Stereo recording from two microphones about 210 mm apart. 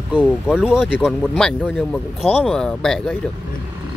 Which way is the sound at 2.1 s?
30° left (ahead or behind).